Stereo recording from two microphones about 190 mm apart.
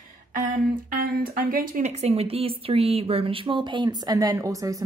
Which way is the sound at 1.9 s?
35° right (ahead or behind).